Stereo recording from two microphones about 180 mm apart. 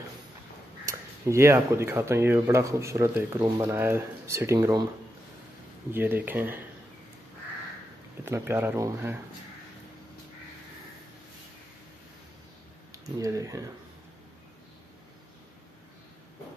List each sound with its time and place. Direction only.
0.8 s speech: 15° right (ahead or behind)
5.9 s speech: 10° right (ahead or behind)
8.3 s speech: 15° right (ahead or behind)
12.9 s speech: 20° right (ahead or behind)